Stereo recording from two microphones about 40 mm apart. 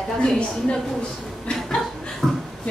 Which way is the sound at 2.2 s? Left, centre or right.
Centre.